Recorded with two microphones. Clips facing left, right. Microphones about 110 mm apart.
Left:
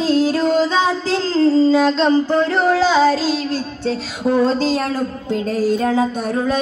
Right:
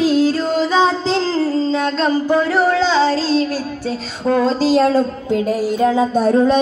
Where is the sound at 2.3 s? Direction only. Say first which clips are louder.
Right 1 dB; 10° right (ahead or behind).